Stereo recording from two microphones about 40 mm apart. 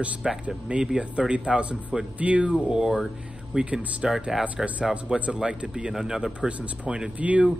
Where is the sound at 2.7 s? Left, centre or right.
Centre.